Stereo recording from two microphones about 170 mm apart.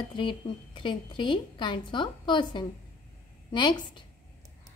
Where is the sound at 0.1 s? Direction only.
30° left (ahead or behind).